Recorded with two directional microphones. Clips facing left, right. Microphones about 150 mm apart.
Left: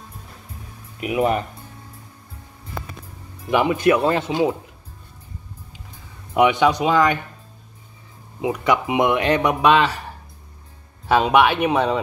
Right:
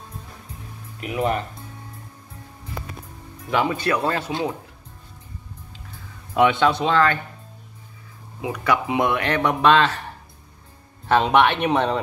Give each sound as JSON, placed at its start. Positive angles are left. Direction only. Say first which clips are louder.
{"t": 1.0, "sound": "speech", "louder": "left 3 dB", "side_deg": 10}
{"t": 3.4, "sound": "speech", "louder": "left 5 dB", "side_deg": 15}
{"t": 6.3, "sound": "speech", "louder": "left 2 dB", "side_deg": 15}
{"t": 8.4, "sound": "speech", "louder": "left 3 dB", "side_deg": 20}
{"t": 11.1, "sound": "speech", "louder": "left 1 dB", "side_deg": 10}